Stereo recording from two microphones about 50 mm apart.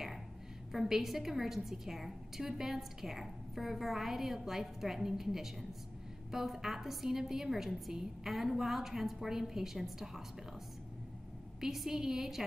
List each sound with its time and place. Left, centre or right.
0.7 s a woman's voice: centre
11.6 s a woman's voice: centre